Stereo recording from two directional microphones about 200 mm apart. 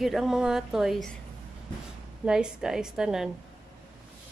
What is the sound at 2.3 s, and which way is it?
A woman's voice, 5° right (ahead or behind).